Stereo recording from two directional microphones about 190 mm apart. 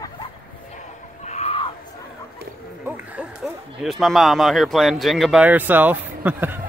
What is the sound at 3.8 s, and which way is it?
Speech, centre (ahead or behind).